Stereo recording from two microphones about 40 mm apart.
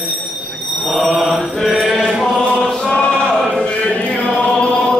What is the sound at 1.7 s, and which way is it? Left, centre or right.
Chant, centre.